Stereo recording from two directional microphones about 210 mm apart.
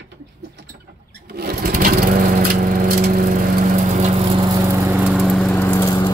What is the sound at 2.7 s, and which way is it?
Lawn mower, 40° right (ahead or behind).